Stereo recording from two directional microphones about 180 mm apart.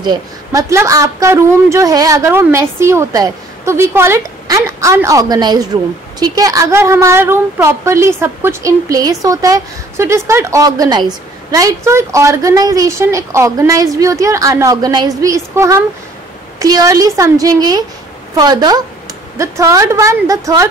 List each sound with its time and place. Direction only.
0.0 s a woman's voice: 20° right (ahead or behind)